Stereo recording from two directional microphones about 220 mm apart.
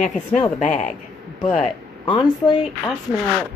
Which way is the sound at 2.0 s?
20° left (ahead or behind).